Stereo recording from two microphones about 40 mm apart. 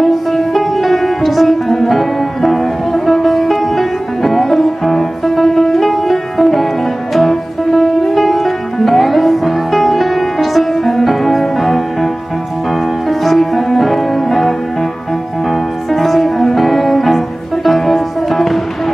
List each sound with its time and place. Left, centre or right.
0.6 s music: centre
13.2 s music: centre
15.9 s music: centre